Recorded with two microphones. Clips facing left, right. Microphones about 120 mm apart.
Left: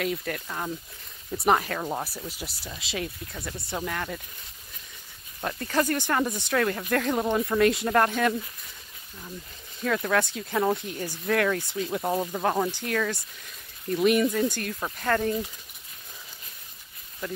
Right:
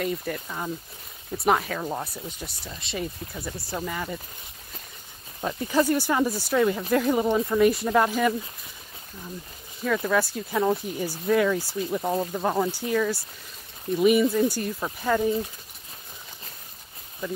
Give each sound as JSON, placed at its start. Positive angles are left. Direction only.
{"t": 0.0, "sound": "speech", "side_deg": 0}
{"t": 5.4, "sound": "speech", "side_deg": -15}
{"t": 9.8, "sound": "speech", "side_deg": -5}
{"t": 12.7, "sound": "speech", "side_deg": -10}
{"t": 17.2, "sound": "speech", "side_deg": -15}